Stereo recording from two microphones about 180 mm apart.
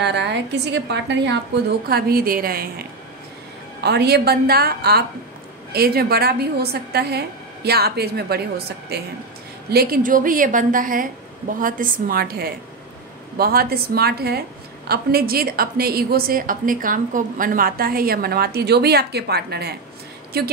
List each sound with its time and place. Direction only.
0.0 s a woman's voice: 70° right (ahead or behind)
1.9 s a woman's voice: 60° right (ahead or behind)
3.8 s a woman's voice: 65° right (ahead or behind)